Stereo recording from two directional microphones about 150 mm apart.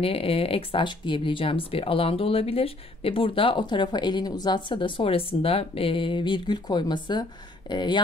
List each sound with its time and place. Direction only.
0.0 s speech: 40° left (ahead or behind)